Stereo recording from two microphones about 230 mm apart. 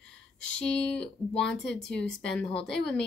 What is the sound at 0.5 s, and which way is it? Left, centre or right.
Speech, centre.